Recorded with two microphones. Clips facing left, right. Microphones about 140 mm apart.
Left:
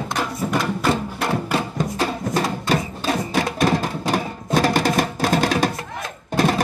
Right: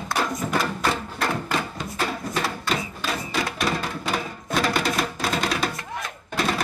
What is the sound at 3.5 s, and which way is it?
Music, 45° left (ahead or behind).